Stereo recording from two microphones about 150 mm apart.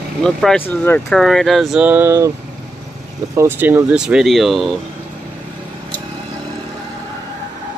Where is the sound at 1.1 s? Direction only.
Centre (ahead or behind); by 2.3 s 15° right (ahead or behind).